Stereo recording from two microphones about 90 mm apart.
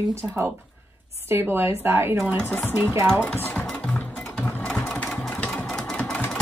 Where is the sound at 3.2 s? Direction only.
20° left (ahead or behind).